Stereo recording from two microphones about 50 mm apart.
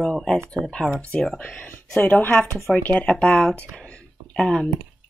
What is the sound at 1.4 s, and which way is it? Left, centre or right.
Speech, left.